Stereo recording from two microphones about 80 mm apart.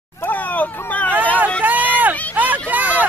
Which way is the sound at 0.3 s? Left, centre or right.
Centre.